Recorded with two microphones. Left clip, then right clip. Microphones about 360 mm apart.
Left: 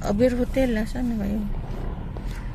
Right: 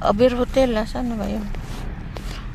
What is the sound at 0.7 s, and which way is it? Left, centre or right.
Speech, right.